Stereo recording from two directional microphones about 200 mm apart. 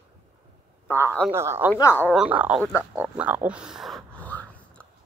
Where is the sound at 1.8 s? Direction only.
10° left (ahead or behind).